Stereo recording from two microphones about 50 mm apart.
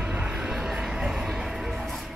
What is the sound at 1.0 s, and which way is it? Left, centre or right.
Music, centre.